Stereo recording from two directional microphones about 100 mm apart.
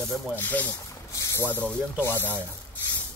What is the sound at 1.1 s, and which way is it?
Vehicle, 30° left (ahead or behind).